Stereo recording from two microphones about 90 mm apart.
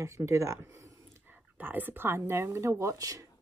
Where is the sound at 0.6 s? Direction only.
35° right (ahead or behind).